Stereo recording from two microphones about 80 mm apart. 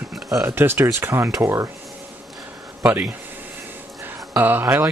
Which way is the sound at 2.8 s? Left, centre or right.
Right.